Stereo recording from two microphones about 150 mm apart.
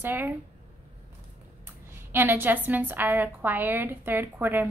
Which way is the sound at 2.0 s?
15° right (ahead or behind).